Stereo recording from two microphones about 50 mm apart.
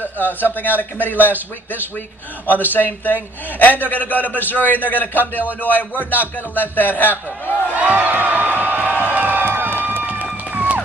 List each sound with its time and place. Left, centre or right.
0.2 s speech: left
2.7 s speech: left
7.7 s a sound: right
8.6 s music: right